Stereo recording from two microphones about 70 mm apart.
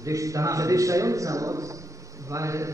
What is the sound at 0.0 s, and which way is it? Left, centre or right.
A man's voice, right.